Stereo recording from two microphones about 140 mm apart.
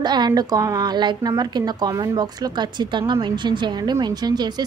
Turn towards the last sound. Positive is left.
turn(degrees=-30)  # may be behind; listen again after turning